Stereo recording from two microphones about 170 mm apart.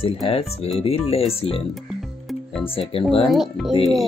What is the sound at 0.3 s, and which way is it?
Speech, 35° left (ahead or behind).